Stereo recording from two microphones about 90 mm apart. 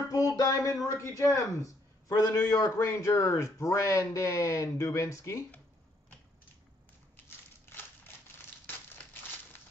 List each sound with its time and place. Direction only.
0.1 s speech: 40° left (ahead or behind)